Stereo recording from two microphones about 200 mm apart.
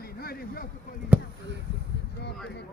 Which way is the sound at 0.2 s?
50° left (ahead or behind).